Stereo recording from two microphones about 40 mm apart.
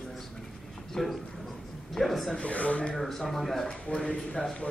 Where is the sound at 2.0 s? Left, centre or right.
Centre.